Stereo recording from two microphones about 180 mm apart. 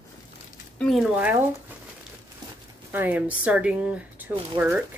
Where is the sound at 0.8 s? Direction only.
Centre (ahead or behind).